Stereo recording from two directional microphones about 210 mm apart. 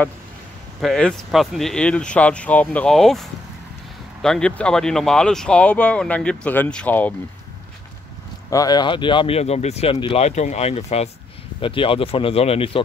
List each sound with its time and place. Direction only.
0.7 s speech: centre (ahead or behind)
8.5 s speech: 15° left (ahead or behind)